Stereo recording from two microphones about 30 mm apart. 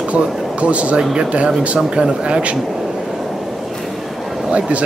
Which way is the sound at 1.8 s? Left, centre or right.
Right.